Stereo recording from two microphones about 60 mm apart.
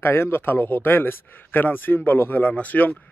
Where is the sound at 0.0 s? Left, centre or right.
Left.